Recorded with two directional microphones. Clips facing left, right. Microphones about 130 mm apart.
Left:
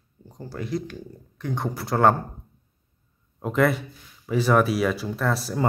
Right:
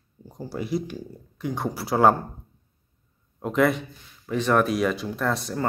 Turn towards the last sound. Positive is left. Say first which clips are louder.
# left 1 dB
turn(degrees=5)  # may be behind; listen again after turning